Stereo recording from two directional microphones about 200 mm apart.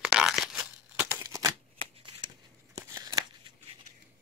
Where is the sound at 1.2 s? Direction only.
15° right (ahead or behind).